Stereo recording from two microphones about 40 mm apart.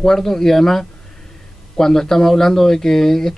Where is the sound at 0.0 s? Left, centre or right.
Centre.